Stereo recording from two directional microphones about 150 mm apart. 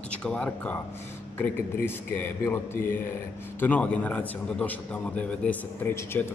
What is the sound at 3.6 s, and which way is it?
Speech, 10° left (ahead or behind).